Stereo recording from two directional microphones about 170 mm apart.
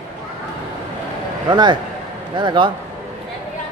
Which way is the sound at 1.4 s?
25° right (ahead or behind).